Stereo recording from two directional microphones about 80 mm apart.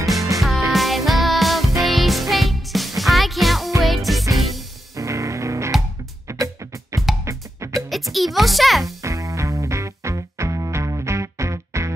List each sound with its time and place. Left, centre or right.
0.0 s music: centre
4.9 s music: right
7.9 s music: centre
9.0 s music: right